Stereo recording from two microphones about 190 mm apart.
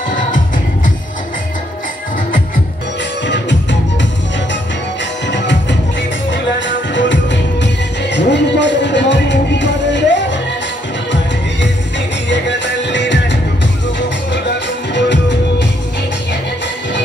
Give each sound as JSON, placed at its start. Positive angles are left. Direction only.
{"t": 3.3, "sound": "music", "side_deg": 65}
{"t": 5.3, "sound": "music", "side_deg": 65}
{"t": 6.9, "sound": "music", "side_deg": 70}
{"t": 12.3, "sound": "music", "side_deg": 70}
{"t": 15.0, "sound": "music", "side_deg": 70}